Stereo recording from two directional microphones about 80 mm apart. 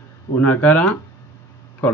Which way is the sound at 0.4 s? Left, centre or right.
Centre.